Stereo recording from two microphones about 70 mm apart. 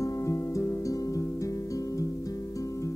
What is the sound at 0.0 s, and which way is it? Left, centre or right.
Music, left.